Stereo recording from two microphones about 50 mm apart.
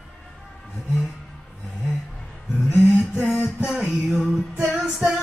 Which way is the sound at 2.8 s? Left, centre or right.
Centre.